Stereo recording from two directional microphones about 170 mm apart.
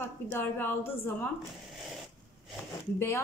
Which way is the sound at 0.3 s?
10° left (ahead or behind).